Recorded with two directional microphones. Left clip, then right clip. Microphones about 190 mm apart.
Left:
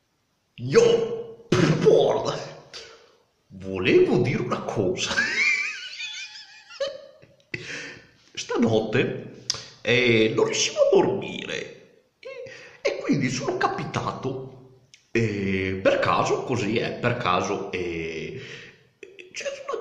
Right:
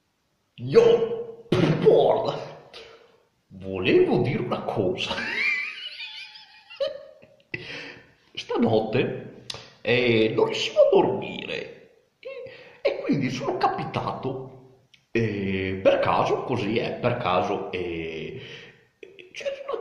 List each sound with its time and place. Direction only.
0.6 s a man's voice: 20° left (ahead or behind)
1.5 s music: 20° left (ahead or behind)
3.5 s beatboxing: 15° left (ahead or behind)
7.5 s a sound: 15° left (ahead or behind)
12.2 s beatboxing: 15° left (ahead or behind)
15.1 s speech: 15° left (ahead or behind)